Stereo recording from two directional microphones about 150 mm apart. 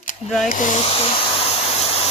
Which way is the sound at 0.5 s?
55° left (ahead or behind).